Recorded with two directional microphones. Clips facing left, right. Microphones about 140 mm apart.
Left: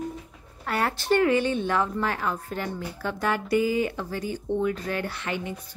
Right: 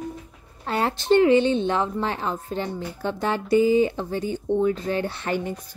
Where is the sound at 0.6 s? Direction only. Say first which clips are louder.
Right 3 dB; 25° right (ahead or behind).